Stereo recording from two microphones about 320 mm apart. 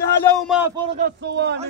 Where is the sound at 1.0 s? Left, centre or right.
Right.